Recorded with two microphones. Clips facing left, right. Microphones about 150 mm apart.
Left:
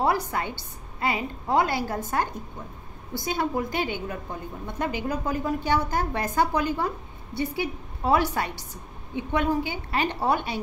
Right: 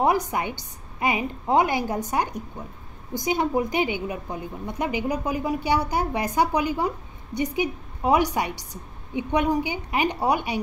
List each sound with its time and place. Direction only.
0.0 s a woman's voice: 20° right (ahead or behind)